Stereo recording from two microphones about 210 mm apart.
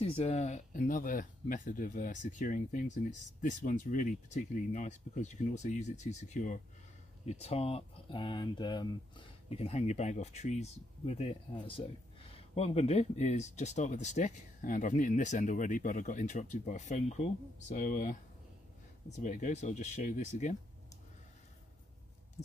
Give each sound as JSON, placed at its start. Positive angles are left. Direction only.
{"t": 0.0, "sound": "speech", "side_deg": 30}